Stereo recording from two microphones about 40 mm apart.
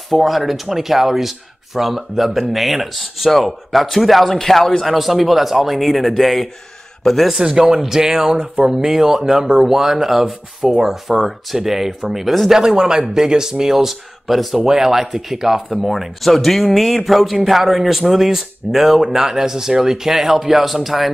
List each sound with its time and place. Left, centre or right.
0.1 s a man's voice: centre
4.8 s a man's voice: centre
7.3 s speech: centre
12.5 s speech: centre
14.6 s speech: centre